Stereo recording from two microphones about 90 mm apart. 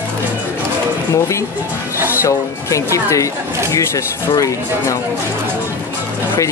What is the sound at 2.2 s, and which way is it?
Speech, 35° left (ahead or behind).